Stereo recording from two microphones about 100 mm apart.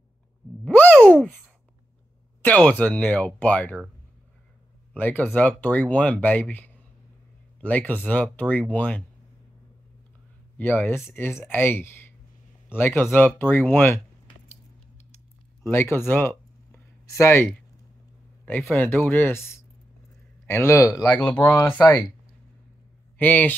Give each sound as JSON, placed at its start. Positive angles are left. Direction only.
{"t": 0.7, "sound": "a sound", "side_deg": 15}
{"t": 2.4, "sound": "speech", "side_deg": 10}
{"t": 4.9, "sound": "speech", "side_deg": 15}
{"t": 7.6, "sound": "speech", "side_deg": 15}
{"t": 10.6, "sound": "speech", "side_deg": 20}
{"t": 15.6, "sound": "a sound", "side_deg": 25}
{"t": 18.8, "sound": "speech", "side_deg": 20}
{"t": 21.1, "sound": "speech", "side_deg": 15}
{"t": 23.1, "sound": "speech", "side_deg": 15}